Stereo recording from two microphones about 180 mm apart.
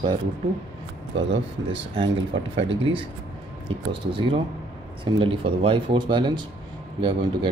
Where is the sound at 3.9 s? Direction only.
25° right (ahead or behind).